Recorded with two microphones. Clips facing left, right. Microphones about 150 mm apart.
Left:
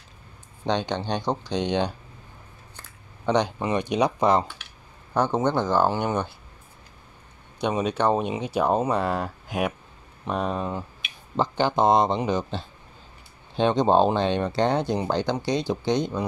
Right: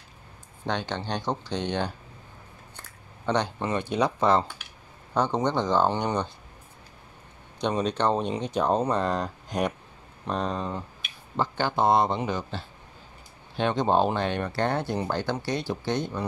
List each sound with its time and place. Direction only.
0.7 s speech: 15° left (ahead or behind)
3.3 s speech: 15° left (ahead or behind)
7.6 s speech: 10° left (ahead or behind)